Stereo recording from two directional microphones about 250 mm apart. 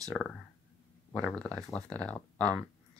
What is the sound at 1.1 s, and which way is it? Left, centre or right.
Speech, centre.